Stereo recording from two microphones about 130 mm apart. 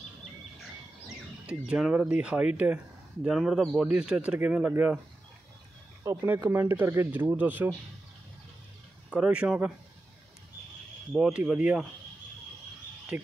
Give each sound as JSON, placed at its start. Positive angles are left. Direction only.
{"t": 1.0, "sound": "speech", "side_deg": -5}
{"t": 6.0, "sound": "speech", "side_deg": -20}
{"t": 9.1, "sound": "speech", "side_deg": -10}
{"t": 11.1, "sound": "speech", "side_deg": -5}
{"t": 13.1, "sound": "speech", "side_deg": -10}